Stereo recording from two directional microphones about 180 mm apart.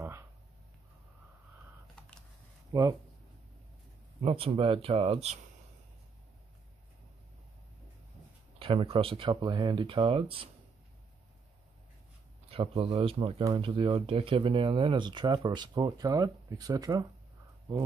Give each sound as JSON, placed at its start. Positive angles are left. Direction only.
{"t": 2.0, "sound": "typing", "side_deg": 5}
{"t": 2.7, "sound": "speech", "side_deg": -20}
{"t": 4.2, "sound": "speech", "side_deg": -30}
{"t": 8.5, "sound": "speech", "side_deg": -30}
{"t": 12.4, "sound": "speech", "side_deg": -30}